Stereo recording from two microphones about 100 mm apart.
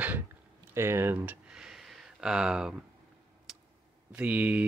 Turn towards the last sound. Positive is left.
turn(degrees=-15)  # may be behind; listen again after turning